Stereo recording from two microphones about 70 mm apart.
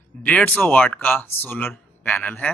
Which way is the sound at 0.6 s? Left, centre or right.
Left.